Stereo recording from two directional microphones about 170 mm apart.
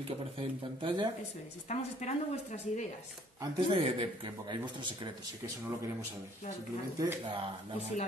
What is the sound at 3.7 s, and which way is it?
A man's voice, 30° right (ahead or behind).